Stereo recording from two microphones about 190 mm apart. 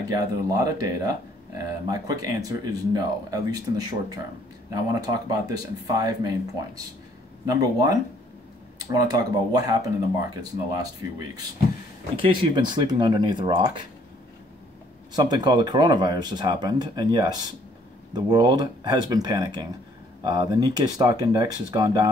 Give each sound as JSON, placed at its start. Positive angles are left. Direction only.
{"t": 0.1, "sound": "speech", "side_deg": -20}
{"t": 7.4, "sound": "speech", "side_deg": -20}
{"t": 15.1, "sound": "speech", "side_deg": -20}